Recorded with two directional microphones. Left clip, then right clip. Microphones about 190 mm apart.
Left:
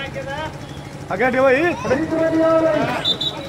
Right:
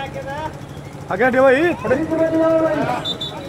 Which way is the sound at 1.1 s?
45° right (ahead or behind).